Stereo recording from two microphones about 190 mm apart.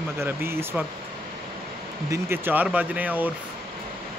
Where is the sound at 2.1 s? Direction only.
10° right (ahead or behind).